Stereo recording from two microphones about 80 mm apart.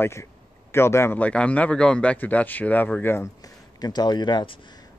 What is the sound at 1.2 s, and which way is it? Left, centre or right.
A man's voice, centre.